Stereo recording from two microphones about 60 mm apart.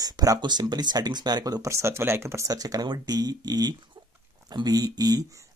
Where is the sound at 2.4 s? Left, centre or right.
Right.